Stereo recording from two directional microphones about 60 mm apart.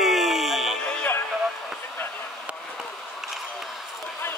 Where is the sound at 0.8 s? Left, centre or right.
Centre.